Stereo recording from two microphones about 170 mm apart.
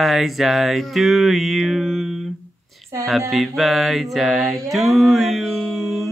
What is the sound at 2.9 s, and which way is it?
Speech, 15° right (ahead or behind).